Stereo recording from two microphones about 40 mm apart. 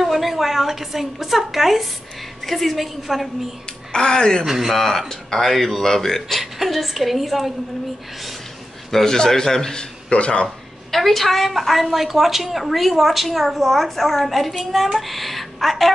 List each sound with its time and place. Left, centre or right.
0.0 s a woman's voice: centre
3.9 s speech: centre
4.5 s speech: centre
4.7 s a woman's voice: centre
8.9 s speech: centre; by 10.5 s left
10.9 s a woman's voice: centre